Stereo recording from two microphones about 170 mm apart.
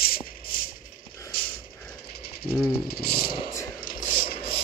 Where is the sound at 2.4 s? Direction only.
65° left (ahead or behind).